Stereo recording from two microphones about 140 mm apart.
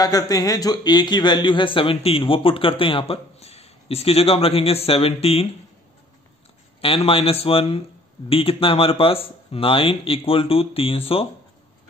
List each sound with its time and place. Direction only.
0.0 s speech: 25° left (ahead or behind); by 5.5 s 45° left (ahead or behind)
6.8 s speech: 45° left (ahead or behind)